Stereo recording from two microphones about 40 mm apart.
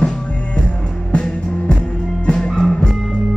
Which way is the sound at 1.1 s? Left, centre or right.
Left.